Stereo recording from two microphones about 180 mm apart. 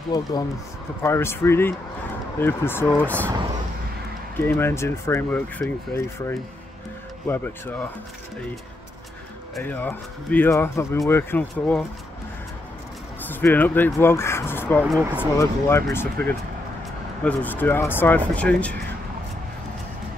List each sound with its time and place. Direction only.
0.1 s speech: 20° left (ahead or behind)
4.4 s speech: 10° left (ahead or behind)
9.6 s speech: 10° left (ahead or behind)
13.3 s speech: 10° left (ahead or behind)
14.8 s speech: centre (ahead or behind)
15.3 s speech: 15° left (ahead or behind)